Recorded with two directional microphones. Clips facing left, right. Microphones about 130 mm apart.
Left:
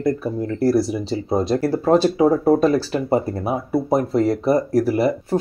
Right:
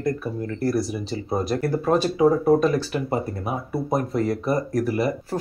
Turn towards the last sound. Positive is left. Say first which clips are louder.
# left 5 dB
turn(degrees=30)  # may be behind; listen again after turning